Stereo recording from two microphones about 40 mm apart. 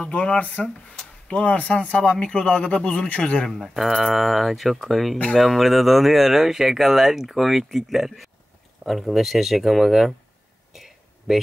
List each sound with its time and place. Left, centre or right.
0.4 s a man's voice: left
3.6 s speech: centre
10.7 s a sound: centre